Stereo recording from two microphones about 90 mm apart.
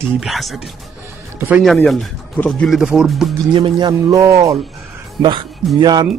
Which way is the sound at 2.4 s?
20° left (ahead or behind).